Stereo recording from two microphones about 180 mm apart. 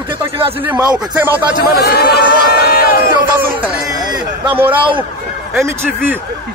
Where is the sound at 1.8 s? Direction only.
65° left (ahead or behind).